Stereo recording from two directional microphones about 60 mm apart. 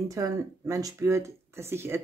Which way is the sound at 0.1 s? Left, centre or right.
Right.